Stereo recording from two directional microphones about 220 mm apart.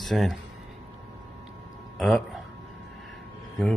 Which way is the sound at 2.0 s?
Centre (ahead or behind).